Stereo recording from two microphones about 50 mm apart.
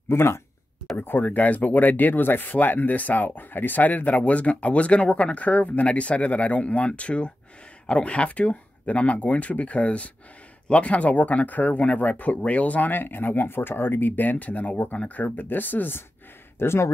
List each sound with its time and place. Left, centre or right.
0.1 s speech: left
0.9 s speech: left
16.5 s speech: left